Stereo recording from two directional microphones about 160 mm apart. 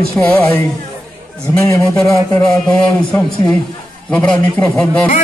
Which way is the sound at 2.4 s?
5° left (ahead or behind).